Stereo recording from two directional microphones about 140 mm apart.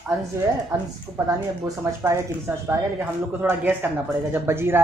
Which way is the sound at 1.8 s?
20° right (ahead or behind).